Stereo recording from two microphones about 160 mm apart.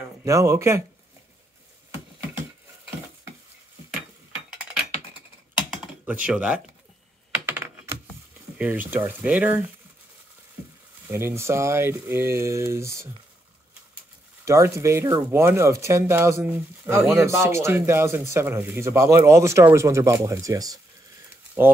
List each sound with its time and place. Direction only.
0.2 s speech: 20° right (ahead or behind)
5.7 s computer keyboard: 10° right (ahead or behind)
8.5 s speech: 10° right (ahead or behind)
11.1 s speech: 15° right (ahead or behind)
14.4 s speech: 20° right (ahead or behind)